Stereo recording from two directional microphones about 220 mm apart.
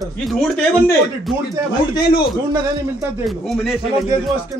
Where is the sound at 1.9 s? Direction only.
20° left (ahead or behind).